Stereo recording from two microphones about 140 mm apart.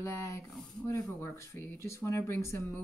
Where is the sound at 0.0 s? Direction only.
20° left (ahead or behind).